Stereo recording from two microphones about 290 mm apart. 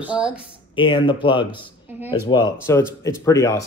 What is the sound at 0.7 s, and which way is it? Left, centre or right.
A man's voice, centre.